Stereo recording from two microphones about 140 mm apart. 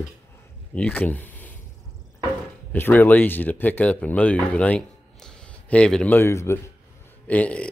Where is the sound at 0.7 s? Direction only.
10° left (ahead or behind).